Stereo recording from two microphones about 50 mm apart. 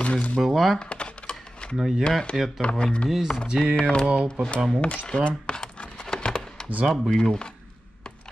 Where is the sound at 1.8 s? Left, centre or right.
Centre.